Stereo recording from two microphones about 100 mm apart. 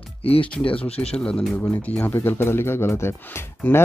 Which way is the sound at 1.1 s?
10° left (ahead or behind).